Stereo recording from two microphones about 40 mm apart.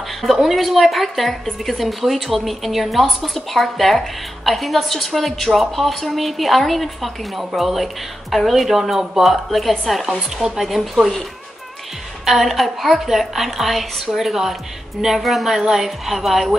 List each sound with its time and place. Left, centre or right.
0.2 s a woman's voice: centre
10.3 s speech: centre
10.6 s a woman's voice: centre
12.3 s a woman's voice: centre